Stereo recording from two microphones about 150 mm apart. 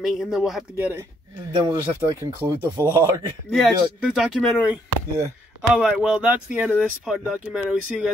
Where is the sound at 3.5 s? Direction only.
Centre (ahead or behind).